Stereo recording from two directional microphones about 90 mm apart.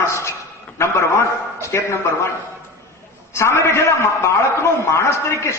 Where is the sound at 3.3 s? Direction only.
30° left (ahead or behind).